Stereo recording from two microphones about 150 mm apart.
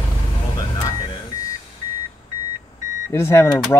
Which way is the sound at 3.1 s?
15° left (ahead or behind).